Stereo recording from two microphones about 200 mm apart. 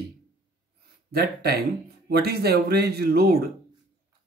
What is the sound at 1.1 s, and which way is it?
Speech, 50° right (ahead or behind).